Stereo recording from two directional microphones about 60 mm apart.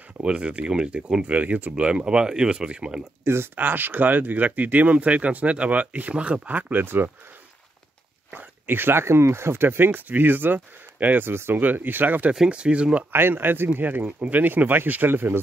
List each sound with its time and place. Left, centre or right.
0.2 s speech: centre
3.5 s speech: right
8.3 s speech: right
12.4 s speech: centre
13.1 s speech: right